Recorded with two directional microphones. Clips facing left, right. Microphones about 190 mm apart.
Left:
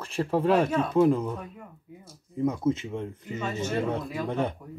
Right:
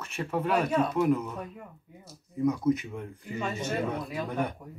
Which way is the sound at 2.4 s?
25° left (ahead or behind).